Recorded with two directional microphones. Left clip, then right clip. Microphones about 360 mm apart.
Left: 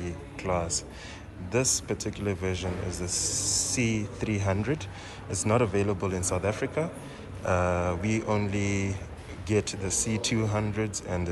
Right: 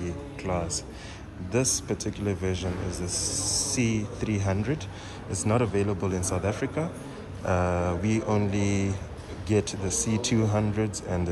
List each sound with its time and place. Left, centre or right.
0.0 s a sound: centre
1.5 s speech: centre
3.3 s speech: centre
3.7 s speech: centre